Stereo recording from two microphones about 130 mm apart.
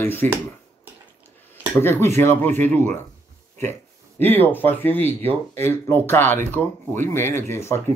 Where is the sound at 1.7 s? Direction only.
20° left (ahead or behind).